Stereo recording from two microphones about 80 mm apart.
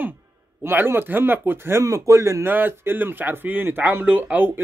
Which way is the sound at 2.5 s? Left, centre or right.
Right.